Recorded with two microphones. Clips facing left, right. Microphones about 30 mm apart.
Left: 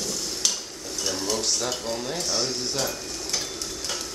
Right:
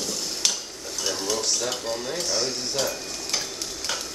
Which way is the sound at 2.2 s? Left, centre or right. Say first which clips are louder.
Right 1 dB; centre.